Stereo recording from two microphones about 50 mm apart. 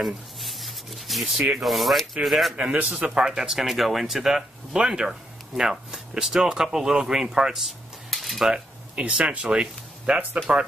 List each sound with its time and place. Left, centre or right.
0.0 s speech: centre
2.5 s speech: right
3.2 s speech: centre
8.1 s cutlery: centre
8.5 s a sound: centre
9.0 s speech: right